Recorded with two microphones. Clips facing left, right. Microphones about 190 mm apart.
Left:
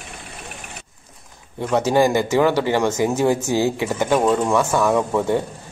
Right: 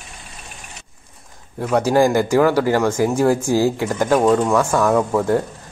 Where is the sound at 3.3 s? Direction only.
10° right (ahead or behind).